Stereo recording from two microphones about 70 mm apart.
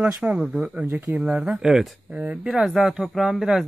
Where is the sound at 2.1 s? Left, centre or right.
Right.